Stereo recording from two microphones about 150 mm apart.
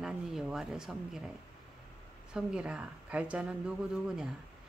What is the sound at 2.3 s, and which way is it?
A woman's voice, 5° right (ahead or behind).